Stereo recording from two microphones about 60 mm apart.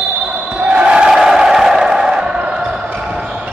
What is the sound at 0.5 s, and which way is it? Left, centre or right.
Crowd, centre.